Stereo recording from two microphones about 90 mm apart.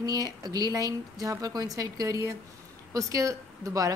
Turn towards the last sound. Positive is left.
turn(degrees=-40)  # may be behind; listen again after turning